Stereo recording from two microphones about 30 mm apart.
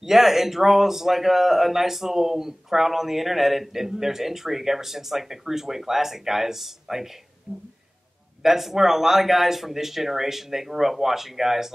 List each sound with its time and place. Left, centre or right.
0.0 s a man's voice: centre
7.5 s speech: left
8.4 s a man's voice: centre